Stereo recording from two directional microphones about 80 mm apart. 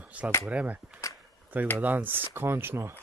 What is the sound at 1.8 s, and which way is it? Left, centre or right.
Speech, right.